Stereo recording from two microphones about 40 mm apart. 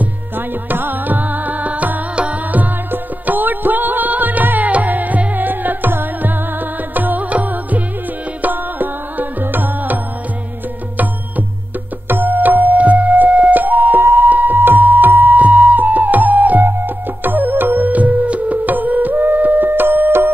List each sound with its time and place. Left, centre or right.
0.7 s music: right
2.9 s music: right
8.4 s music: right
12.1 s music: right
14.0 s music: right